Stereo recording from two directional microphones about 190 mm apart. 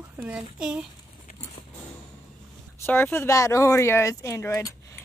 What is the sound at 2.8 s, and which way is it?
Speech, 10° left (ahead or behind).